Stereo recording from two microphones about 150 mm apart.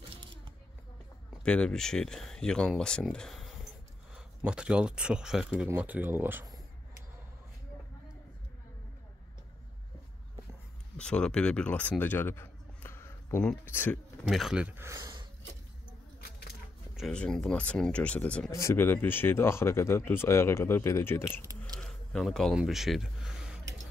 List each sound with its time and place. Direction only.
0.2 s a sound: 35° right (ahead or behind)
1.4 s speech: 5° left (ahead or behind); by 6.4 s 15° right (ahead or behind)
11.0 s speech: 5° left (ahead or behind)
14.2 s speech: centre (ahead or behind); by 15.1 s 20° right (ahead or behind)
16.9 s speech: 5° left (ahead or behind)
18.5 s speech: 20° left (ahead or behind)
21.7 s a sound: 5° left (ahead or behind)